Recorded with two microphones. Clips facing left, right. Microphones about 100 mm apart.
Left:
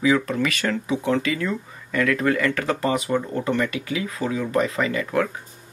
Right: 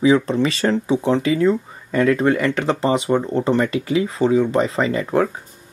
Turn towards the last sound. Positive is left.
turn(degrees=-30)  # may be behind; listen again after turning